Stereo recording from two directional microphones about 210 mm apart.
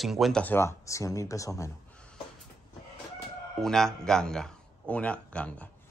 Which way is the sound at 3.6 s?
Centre (ahead or behind).